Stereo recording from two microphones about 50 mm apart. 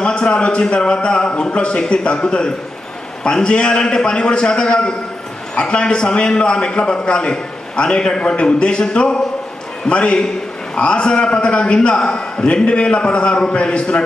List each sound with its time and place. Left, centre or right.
0.0 s a man's voice: centre